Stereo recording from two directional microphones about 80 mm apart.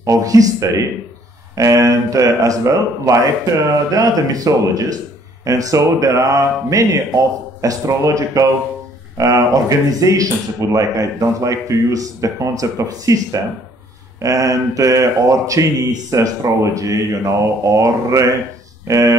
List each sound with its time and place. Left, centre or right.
0.0 s speech: right